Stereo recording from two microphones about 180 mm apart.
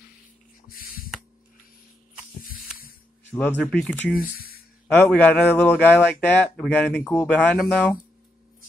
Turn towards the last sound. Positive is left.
turn(degrees=10)  # may be behind; listen again after turning